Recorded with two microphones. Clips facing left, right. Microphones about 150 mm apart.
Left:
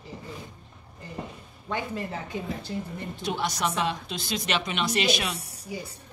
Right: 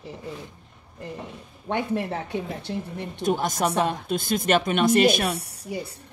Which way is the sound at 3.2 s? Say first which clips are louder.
Right 5 dB; 45° right (ahead or behind).